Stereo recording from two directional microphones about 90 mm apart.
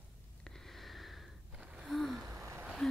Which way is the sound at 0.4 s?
5° left (ahead or behind).